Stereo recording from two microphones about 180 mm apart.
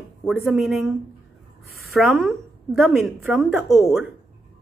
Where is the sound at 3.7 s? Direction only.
15° left (ahead or behind).